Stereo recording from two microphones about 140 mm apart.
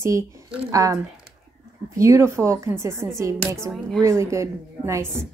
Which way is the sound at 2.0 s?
20° right (ahead or behind).